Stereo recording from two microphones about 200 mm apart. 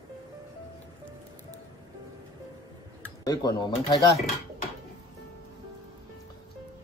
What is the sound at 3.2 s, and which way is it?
Speech, 20° left (ahead or behind).